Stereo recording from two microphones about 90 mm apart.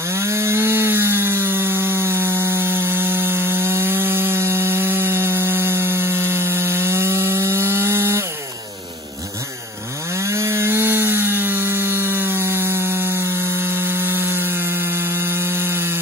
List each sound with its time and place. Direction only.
0.1 s wood: 30° right (ahead or behind)
10.1 s wood: 35° right (ahead or behind)